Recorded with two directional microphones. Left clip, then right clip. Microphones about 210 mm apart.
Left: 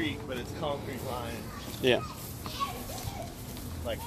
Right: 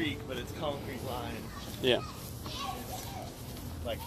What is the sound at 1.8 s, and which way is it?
Speech, 15° left (ahead or behind).